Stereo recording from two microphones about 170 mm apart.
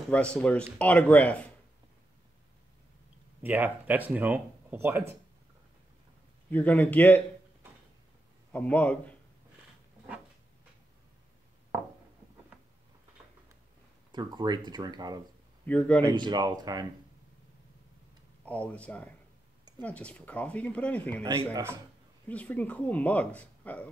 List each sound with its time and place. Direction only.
0.4 s speech: 5° left (ahead or behind)
3.4 s speech: 10° right (ahead or behind)
6.5 s speech: 10° left (ahead or behind)
8.5 s speech: 10° left (ahead or behind)
14.1 s speech: 25° right (ahead or behind)
15.6 s speech: 10° left (ahead or behind)
16.1 s speech: 25° right (ahead or behind)
18.4 s speech: 10° left (ahead or behind)
21.2 s speech: 15° right (ahead or behind)
22.3 s speech: 10° left (ahead or behind)